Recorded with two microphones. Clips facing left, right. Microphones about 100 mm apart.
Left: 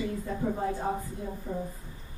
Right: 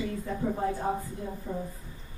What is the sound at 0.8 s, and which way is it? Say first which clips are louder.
Speech: right 1 dB; 5° right (ahead or behind).